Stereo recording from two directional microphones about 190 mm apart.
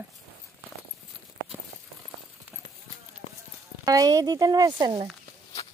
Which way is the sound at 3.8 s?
20° right (ahead or behind).